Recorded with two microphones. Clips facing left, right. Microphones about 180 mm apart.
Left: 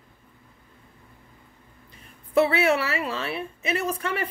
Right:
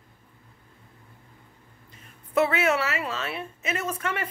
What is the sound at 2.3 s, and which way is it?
A woman's voice, 35° left (ahead or behind).